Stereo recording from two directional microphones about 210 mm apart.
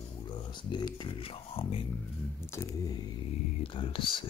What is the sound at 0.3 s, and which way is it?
Speech, 20° left (ahead or behind).